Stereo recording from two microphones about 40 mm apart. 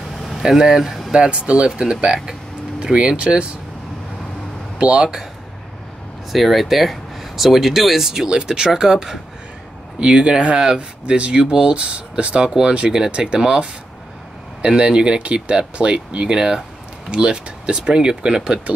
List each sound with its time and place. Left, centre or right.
0.0 s vehicle: centre
0.4 s speech: centre
1.1 s speech: right
4.7 s speech: right
6.3 s speech: centre
8.3 s speech: centre
9.9 s speech: right
13.4 s speech: centre